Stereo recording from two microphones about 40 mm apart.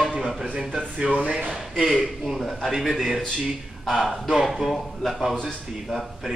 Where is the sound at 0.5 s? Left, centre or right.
Right.